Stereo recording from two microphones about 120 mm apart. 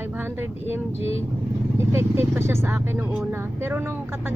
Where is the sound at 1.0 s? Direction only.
55° left (ahead or behind).